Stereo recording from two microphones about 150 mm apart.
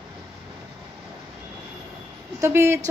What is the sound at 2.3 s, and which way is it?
Speech, 20° right (ahead or behind).